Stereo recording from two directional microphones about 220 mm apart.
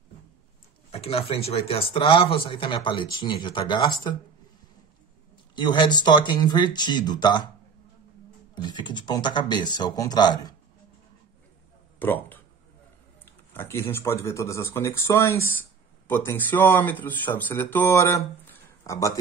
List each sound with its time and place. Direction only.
0.9 s speech: 25° left (ahead or behind)
5.6 s speech: 20° left (ahead or behind)
8.5 s speech: 20° left (ahead or behind)
12.0 s speech: 10° left (ahead or behind)